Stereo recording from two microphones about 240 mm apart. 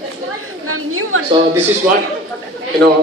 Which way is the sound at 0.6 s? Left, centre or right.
Right.